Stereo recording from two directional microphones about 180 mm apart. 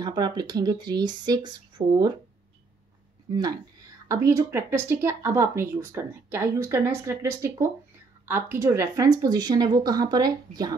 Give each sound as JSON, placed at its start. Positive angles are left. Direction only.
{"t": 0.0, "sound": "speech", "side_deg": -25}
{"t": 3.3, "sound": "speech", "side_deg": -20}